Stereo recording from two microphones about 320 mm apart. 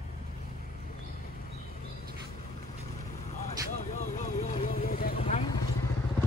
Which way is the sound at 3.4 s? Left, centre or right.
Left.